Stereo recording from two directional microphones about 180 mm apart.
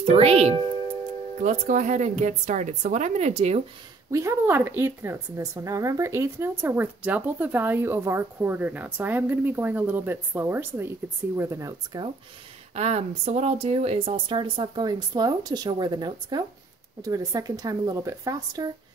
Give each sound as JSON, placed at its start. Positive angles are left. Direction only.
{"t": 0.0, "sound": "speech", "side_deg": -35}
{"t": 4.1, "sound": "a woman's voice", "side_deg": -15}
{"t": 12.7, "sound": "speech", "side_deg": -35}